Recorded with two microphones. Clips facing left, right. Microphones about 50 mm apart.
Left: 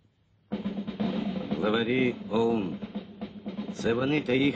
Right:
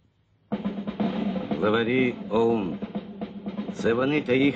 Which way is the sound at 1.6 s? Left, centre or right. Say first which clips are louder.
Right 3 dB; centre.